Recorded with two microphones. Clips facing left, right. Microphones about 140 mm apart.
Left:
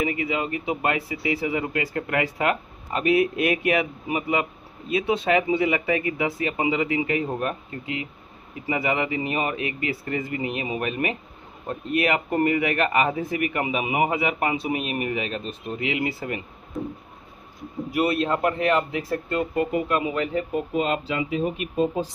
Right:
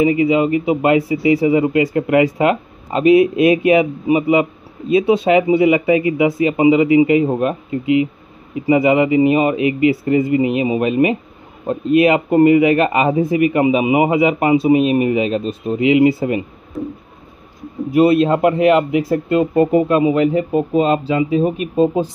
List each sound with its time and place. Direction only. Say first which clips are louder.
0.0 s a man's voice: right 12 dB; 20° right (ahead or behind)
16.7 s a sound: right 6 dB; centre (ahead or behind)
17.9 s speech: right 11 dB; 25° right (ahead or behind)
19.3 s a man's voice: right 11 dB; 25° right (ahead or behind)
20.7 s speech: right 9 dB; 35° right (ahead or behind)